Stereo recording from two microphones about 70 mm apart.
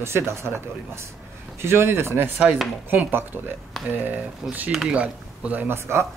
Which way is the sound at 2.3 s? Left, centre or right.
Centre.